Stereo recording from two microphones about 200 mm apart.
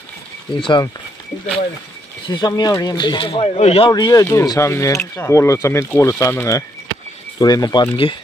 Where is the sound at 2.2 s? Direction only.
20° left (ahead or behind).